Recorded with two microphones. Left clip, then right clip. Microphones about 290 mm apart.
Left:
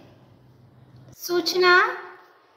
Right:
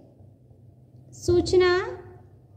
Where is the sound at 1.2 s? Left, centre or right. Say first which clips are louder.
Right 1 dB; centre.